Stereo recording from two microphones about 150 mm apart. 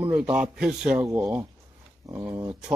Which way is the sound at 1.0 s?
15° right (ahead or behind).